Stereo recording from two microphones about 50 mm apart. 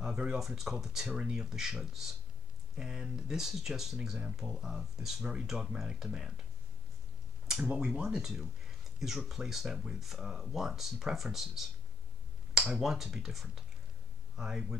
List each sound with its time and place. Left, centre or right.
0.0 s a sound: centre
0.4 s speech: centre
7.6 s speech: right